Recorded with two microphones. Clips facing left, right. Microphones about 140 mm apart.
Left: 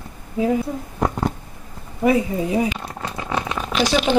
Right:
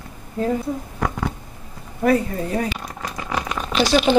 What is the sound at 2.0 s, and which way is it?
Speech, 10° left (ahead or behind).